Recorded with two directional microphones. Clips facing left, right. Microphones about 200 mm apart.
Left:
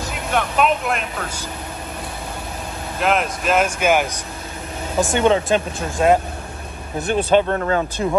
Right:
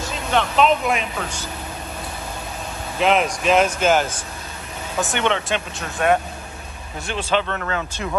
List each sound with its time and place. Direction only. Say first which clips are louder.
0.3 s speech: right 1 dB; 5° left (ahead or behind)
3.0 s speech: right 2 dB; centre (ahead or behind)
5.2 s speech: left 7 dB; 35° left (ahead or behind)
7.0 s speech: left 7 dB; 50° left (ahead or behind)
7.5 s speech: left 6 dB; 30° left (ahead or behind)